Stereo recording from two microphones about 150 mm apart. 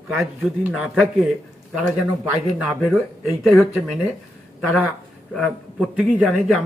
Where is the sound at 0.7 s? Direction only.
5° right (ahead or behind).